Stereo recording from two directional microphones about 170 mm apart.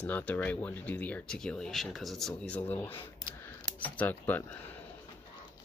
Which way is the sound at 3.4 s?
10° left (ahead or behind).